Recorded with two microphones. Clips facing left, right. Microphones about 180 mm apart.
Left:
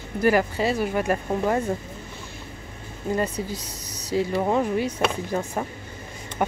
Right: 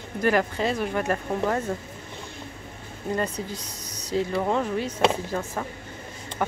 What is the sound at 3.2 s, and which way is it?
Speech, 10° left (ahead or behind).